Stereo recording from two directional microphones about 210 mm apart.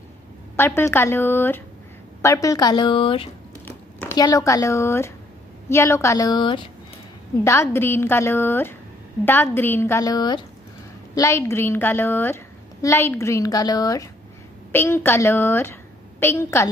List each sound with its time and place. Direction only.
0.6 s a woman's voice: 10° left (ahead or behind)
3.6 s a woman's voice: 10° left (ahead or behind)